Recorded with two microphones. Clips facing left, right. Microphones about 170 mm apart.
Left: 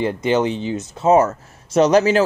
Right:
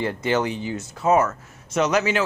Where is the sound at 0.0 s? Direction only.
20° left (ahead or behind).